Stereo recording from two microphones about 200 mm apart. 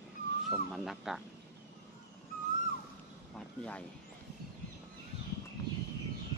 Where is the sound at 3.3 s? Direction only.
5° left (ahead or behind).